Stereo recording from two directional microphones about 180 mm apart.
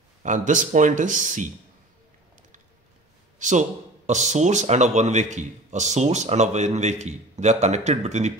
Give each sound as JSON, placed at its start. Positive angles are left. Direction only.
{"t": 0.2, "sound": "speech", "side_deg": -45}
{"t": 3.3, "sound": "speech", "side_deg": -40}